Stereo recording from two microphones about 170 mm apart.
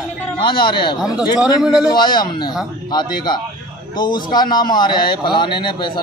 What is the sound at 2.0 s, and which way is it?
Speech, 25° left (ahead or behind).